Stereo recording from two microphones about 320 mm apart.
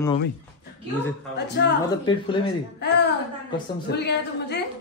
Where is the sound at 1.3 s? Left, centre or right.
Left.